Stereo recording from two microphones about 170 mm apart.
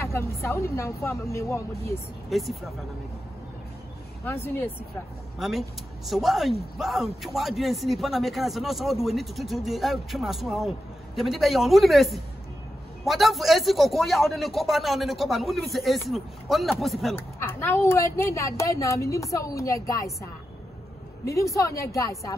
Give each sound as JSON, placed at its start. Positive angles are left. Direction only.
{"t": 0.0, "sound": "a woman's voice", "side_deg": 15}
{"t": 2.2, "sound": "speech", "side_deg": 0}
{"t": 4.2, "sound": "a woman's voice", "side_deg": 10}
{"t": 5.4, "sound": "a man's voice", "side_deg": 0}
{"t": 17.4, "sound": "a woman's voice", "side_deg": 15}
{"t": 21.3, "sound": "a woman's voice", "side_deg": 20}